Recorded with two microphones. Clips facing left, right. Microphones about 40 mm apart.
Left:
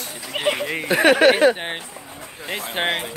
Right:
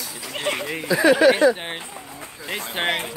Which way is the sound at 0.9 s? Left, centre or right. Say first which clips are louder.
Left 1 dB; left.